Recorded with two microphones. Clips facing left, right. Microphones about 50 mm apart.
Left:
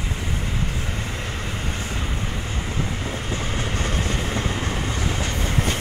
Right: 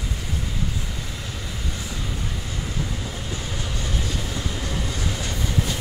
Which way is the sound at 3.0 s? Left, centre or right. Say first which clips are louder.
Left 4 dB; left.